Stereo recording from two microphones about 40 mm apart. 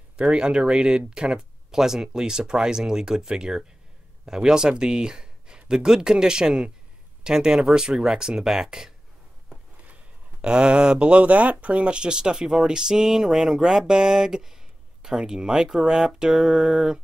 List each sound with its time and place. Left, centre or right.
0.2 s speech: right
10.4 s speech: right